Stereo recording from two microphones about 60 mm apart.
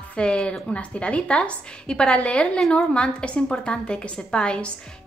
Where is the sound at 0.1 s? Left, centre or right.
Centre.